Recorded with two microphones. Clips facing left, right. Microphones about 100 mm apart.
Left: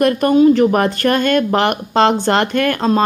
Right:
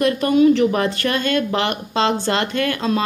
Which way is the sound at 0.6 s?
50° left (ahead or behind).